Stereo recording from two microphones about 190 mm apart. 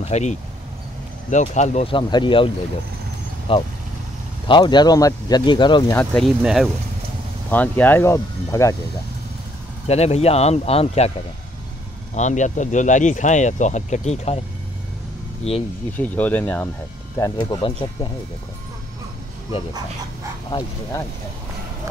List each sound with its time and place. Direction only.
0.0 s speech: 35° left (ahead or behind)
5.9 s speech: 5° left (ahead or behind)
9.8 s speech: 35° left (ahead or behind)
12.1 s speech: 40° left (ahead or behind)
15.5 s speech: 35° left (ahead or behind)
16.0 s speech: 10° left (ahead or behind)
17.2 s speech: 20° left (ahead or behind)